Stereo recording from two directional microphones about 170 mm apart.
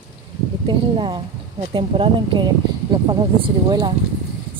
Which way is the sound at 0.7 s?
30° right (ahead or behind).